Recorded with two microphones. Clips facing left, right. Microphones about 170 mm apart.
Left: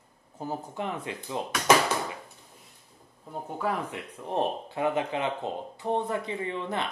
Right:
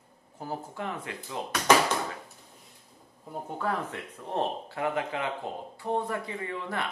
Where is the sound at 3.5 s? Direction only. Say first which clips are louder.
Left 1 dB; 10° left (ahead or behind).